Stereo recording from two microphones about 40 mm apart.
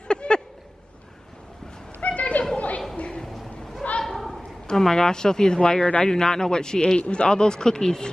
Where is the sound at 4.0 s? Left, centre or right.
Centre.